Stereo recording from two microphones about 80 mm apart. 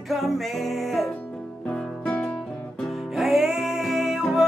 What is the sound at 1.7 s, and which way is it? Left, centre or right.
Music, centre.